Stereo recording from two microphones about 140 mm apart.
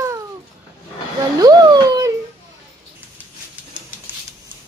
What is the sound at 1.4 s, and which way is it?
Speech, 30° right (ahead or behind).